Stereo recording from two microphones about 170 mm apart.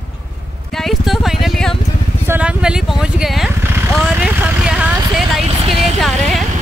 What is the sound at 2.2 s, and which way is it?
Speech, 10° right (ahead or behind).